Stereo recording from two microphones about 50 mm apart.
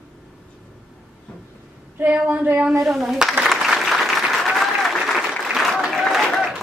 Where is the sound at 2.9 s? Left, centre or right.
Centre.